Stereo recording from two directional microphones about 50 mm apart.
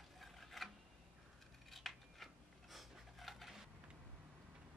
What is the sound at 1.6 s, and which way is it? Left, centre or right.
Scissors, centre.